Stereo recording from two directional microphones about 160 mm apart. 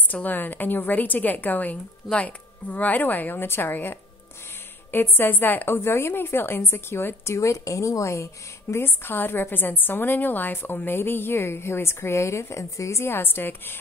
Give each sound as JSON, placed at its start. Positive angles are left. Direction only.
{"t": 0.1, "sound": "a woman's voice", "side_deg": 10}